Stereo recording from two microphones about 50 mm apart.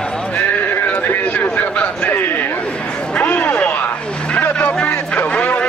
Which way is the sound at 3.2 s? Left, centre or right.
Left.